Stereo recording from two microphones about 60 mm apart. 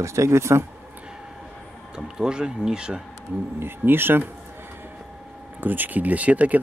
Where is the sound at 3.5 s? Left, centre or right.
Right.